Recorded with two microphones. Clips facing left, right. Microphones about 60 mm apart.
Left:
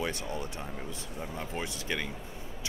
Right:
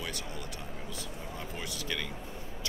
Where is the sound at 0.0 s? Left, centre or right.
Left.